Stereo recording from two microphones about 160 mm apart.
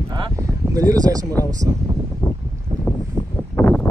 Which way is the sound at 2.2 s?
10° left (ahead or behind).